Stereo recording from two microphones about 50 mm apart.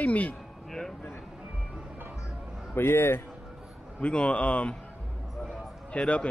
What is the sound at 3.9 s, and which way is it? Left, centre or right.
Speech, left.